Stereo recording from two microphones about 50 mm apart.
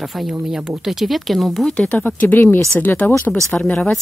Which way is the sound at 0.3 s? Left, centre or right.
Centre.